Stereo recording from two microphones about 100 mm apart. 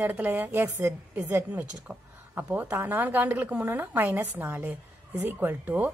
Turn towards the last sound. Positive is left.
turn(degrees=-20)  # may be behind; listen again after turning